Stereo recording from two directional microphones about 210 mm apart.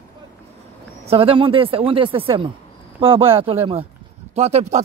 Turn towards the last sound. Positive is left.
turn(degrees=-30)  # may be behind; listen again after turning